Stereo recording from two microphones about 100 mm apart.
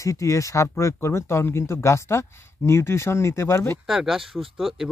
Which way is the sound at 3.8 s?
5° right (ahead or behind).